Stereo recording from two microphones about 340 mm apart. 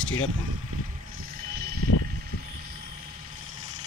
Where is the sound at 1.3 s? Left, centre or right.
Right.